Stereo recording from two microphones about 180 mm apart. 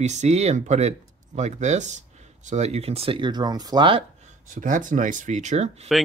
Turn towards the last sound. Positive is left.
turn(degrees=-35)  # may be behind; listen again after turning